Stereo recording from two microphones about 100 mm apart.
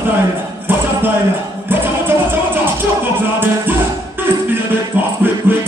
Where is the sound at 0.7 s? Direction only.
20° right (ahead or behind).